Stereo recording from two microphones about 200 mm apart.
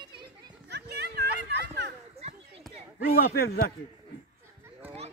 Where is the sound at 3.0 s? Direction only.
50° left (ahead or behind).